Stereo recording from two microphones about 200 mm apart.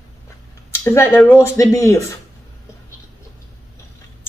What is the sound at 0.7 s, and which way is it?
Speech, 10° left (ahead or behind).